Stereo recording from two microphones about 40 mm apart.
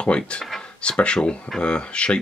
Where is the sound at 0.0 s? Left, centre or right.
Left.